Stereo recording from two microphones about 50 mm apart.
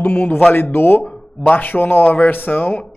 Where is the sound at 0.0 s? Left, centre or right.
Left.